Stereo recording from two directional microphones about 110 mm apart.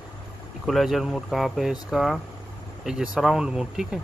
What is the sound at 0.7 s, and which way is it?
Speech, centre (ahead or behind).